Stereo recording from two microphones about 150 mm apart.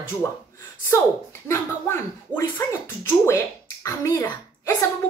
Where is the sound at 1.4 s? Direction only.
15° left (ahead or behind).